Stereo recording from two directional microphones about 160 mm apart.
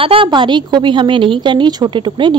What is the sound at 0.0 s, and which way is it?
A woman's voice, 35° right (ahead or behind).